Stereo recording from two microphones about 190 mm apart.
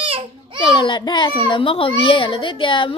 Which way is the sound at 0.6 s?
25° left (ahead or behind).